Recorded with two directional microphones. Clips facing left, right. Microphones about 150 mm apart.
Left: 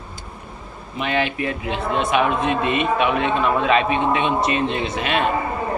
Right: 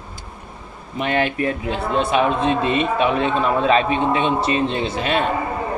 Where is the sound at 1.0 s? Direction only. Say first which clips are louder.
Right 2 dB; 45° right (ahead or behind).